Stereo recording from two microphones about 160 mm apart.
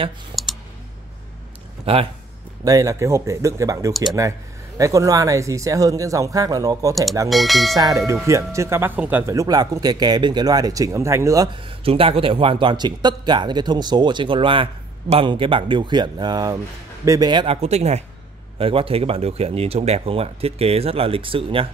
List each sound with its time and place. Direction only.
1.9 s speech: 35° right (ahead or behind)
2.6 s speech: 20° right (ahead or behind)
7.2 s speech: centre (ahead or behind)
7.7 s speech: 20° right (ahead or behind)
17.6 s speech: 45° right (ahead or behind)